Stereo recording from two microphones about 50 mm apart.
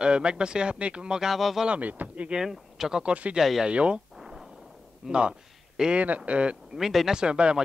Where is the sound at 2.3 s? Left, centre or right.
Centre.